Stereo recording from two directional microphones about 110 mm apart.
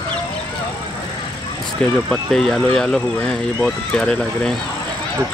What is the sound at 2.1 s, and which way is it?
Speech, 5° left (ahead or behind).